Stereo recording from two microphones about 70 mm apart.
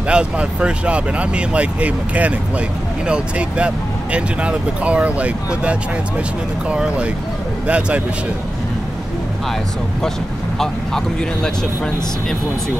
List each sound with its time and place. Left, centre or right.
0.1 s a man's voice: centre
10.6 s speech: centre